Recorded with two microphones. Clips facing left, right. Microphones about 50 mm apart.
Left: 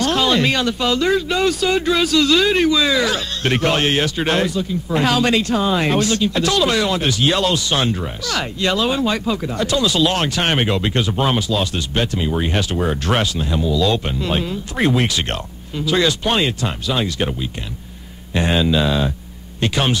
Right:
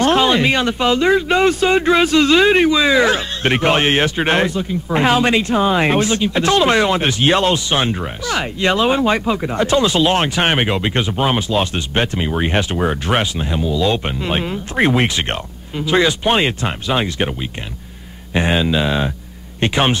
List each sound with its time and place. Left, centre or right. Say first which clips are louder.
0.0 s speech: right 3 dB; right
18.3 s speech: right 1 dB; right